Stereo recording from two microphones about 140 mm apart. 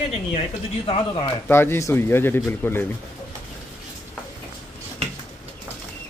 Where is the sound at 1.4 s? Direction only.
15° left (ahead or behind).